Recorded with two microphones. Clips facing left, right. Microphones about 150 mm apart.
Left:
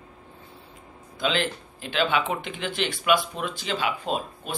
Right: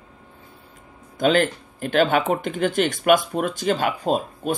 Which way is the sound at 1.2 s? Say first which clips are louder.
Right 8 dB; 50° right (ahead or behind).